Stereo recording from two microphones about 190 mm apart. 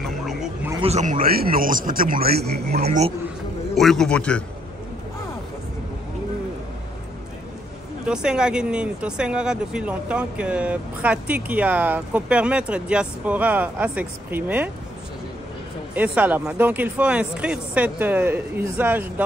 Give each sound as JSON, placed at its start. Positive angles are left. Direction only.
{"t": 0.0, "sound": "bow-wow", "side_deg": 0}
{"t": 0.8, "sound": "a man's voice", "side_deg": -40}
{"t": 2.8, "sound": "speech", "side_deg": -35}
{"t": 3.7, "sound": "a man's voice", "side_deg": 0}
{"t": 8.1, "sound": "speech", "side_deg": -5}
{"t": 15.9, "sound": "speech", "side_deg": -10}